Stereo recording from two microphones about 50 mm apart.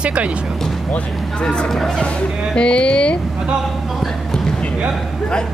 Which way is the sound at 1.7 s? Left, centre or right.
Centre.